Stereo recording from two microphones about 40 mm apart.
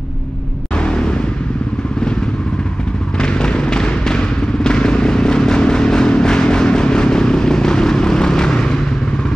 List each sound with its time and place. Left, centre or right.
0.7 s vehicle: left
3.2 s vehicle: left